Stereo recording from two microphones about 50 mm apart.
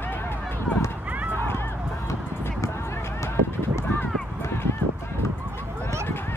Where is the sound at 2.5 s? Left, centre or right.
Left.